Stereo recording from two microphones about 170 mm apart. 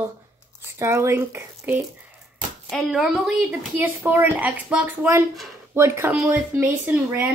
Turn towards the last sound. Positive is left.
turn(degrees=-10)  # may be behind; listen again after turning